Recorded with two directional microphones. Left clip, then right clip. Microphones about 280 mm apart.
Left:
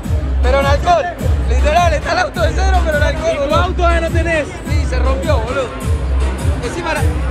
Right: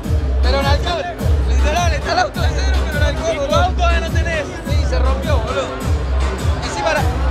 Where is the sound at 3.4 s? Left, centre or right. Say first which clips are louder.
Even; centre.